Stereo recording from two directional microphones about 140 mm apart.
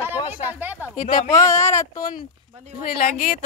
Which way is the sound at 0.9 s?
60° left (ahead or behind).